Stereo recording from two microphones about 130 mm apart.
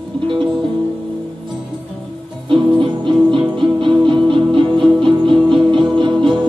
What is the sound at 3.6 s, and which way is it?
Music, 40° right (ahead or behind).